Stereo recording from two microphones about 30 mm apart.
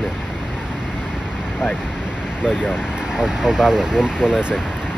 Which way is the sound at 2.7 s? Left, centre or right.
Right.